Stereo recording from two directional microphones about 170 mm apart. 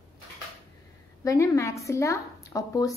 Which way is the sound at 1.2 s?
20° left (ahead or behind).